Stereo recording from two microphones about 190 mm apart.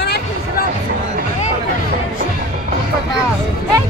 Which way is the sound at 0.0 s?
55° left (ahead or behind).